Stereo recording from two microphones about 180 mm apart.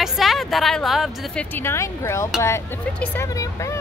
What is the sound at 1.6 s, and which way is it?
Speech, 15° left (ahead or behind).